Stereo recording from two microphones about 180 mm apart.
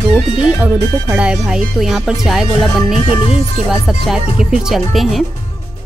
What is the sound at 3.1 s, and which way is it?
Speech, 35° left (ahead or behind).